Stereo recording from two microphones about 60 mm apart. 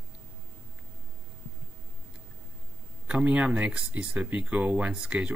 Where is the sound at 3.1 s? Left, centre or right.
Right.